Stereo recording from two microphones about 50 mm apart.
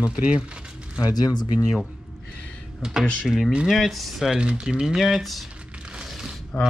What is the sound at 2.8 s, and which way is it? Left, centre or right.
Speech, centre.